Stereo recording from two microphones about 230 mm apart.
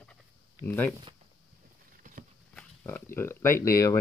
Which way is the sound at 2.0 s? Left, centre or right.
Right.